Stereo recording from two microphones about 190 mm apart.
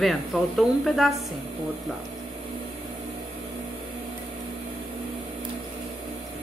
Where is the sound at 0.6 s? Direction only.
Centre (ahead or behind).